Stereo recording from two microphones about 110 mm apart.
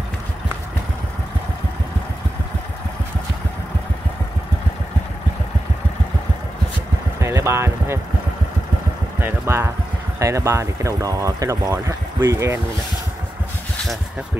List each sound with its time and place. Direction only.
7.2 s vehicle: 25° right (ahead or behind)
9.2 s speech: 20° right (ahead or behind)